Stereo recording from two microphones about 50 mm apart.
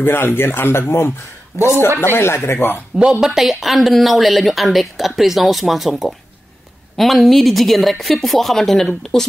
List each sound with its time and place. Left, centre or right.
0.0 s speech: left
3.1 s speech: centre